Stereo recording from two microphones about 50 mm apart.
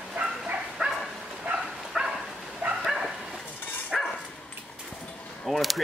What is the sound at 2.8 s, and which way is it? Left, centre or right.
Bow-wow, centre.